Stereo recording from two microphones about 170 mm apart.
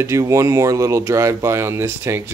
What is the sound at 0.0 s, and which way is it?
Speech, 15° right (ahead or behind).